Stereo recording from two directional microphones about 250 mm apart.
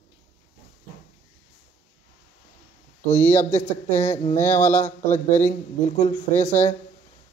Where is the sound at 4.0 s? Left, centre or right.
Left.